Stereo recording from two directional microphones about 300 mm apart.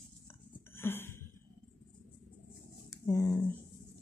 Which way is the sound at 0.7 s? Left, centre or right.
Centre.